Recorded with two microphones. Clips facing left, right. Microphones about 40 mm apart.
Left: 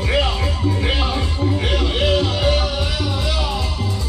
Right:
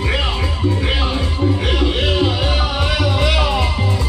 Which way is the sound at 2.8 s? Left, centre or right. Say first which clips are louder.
Right 5 dB; right.